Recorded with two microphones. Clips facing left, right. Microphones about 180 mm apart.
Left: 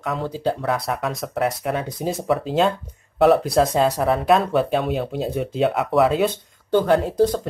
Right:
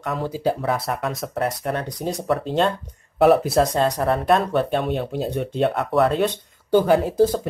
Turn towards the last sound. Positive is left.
turn(degrees=-5)  # may be behind; listen again after turning